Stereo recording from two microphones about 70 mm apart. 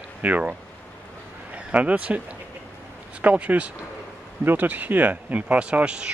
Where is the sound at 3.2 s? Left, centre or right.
Right.